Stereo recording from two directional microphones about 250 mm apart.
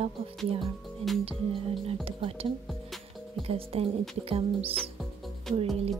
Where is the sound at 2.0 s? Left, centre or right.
Right.